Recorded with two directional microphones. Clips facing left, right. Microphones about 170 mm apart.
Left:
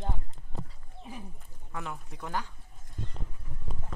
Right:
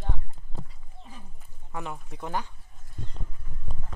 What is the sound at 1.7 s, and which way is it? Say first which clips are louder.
Speech: right 3 dB; 20° right (ahead or behind).